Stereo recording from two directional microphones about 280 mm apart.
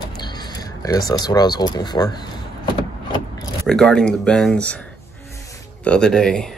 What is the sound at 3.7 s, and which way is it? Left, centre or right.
Speech, centre.